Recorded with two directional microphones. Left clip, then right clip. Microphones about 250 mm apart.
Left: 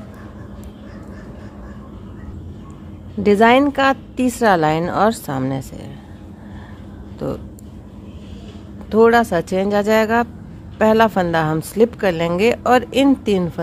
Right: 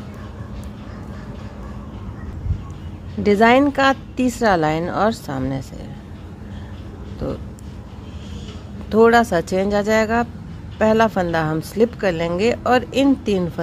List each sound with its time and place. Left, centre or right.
3.2 s a woman's voice: centre
7.2 s a woman's voice: centre
8.9 s a woman's voice: centre